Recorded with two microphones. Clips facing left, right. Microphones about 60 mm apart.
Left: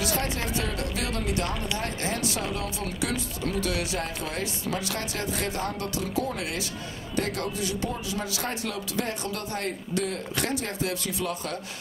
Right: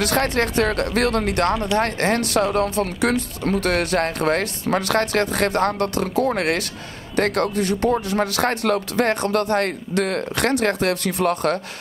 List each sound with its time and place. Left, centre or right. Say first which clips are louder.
0.0 s speech: right 9 dB; right